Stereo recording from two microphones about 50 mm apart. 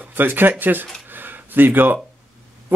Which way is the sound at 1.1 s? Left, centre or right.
Right.